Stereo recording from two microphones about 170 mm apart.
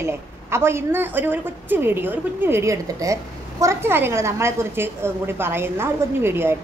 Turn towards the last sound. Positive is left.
turn(degrees=-15)  # may be behind; listen again after turning